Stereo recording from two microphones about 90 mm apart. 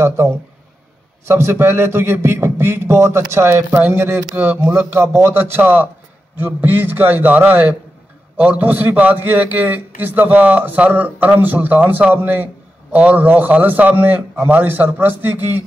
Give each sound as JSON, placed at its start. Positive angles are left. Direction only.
{"t": 0.0, "sound": "a man's voice", "side_deg": -30}